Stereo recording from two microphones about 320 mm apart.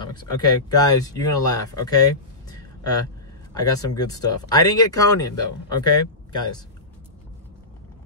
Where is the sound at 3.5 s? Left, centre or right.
Centre.